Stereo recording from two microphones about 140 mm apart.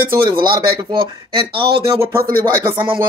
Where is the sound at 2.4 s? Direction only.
20° right (ahead or behind).